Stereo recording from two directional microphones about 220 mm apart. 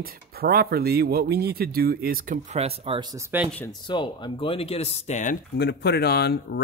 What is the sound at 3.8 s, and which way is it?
Speech, 20° left (ahead or behind).